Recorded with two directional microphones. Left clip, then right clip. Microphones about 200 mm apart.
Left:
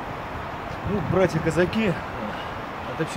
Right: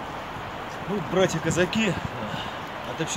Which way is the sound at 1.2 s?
20° left (ahead or behind).